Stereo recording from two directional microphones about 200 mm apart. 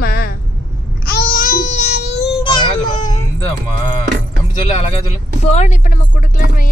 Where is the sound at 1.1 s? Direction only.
45° left (ahead or behind); by 3.1 s 20° left (ahead or behind).